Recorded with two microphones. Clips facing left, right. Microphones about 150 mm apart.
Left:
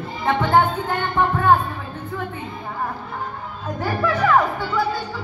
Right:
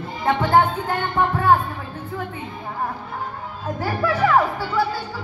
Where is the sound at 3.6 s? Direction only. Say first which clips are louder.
Left 1 dB; 35° right (ahead or behind).